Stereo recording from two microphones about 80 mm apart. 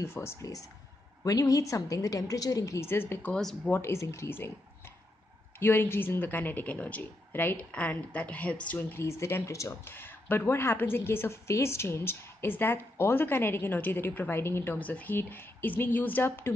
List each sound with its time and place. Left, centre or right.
0.0 s a woman's voice: left
2.9 s a woman's voice: left
5.6 s a woman's voice: left
9.0 s speech: left
9.8 s a woman's voice: left
14.8 s a woman's voice: centre